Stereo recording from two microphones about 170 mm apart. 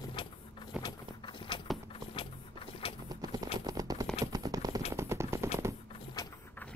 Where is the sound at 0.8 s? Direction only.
30° left (ahead or behind).